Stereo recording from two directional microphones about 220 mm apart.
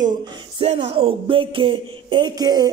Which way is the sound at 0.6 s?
30° right (ahead or behind).